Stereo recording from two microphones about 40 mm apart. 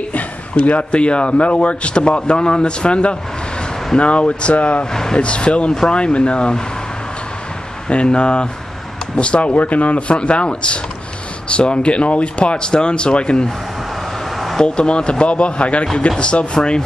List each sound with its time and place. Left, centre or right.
0.6 s speech: left
7.9 s speech: left
14.6 s speech: left